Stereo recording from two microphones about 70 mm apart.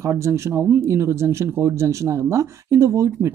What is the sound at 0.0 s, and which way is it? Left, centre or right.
Speech, right.